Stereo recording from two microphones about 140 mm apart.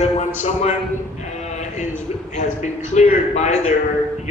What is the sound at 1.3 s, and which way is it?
Music, 55° left (ahead or behind).